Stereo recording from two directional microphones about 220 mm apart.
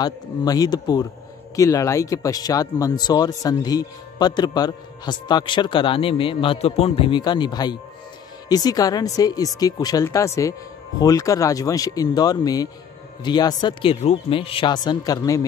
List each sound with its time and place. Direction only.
0.0 s speech: 15° left (ahead or behind)